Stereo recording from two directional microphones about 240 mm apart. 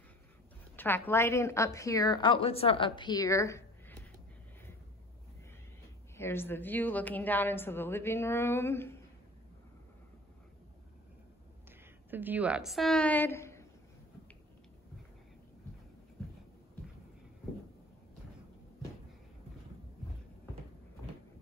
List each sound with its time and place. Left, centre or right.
0.7 s a woman's voice: centre
6.1 s a woman's voice: centre
12.1 s a woman's voice: centre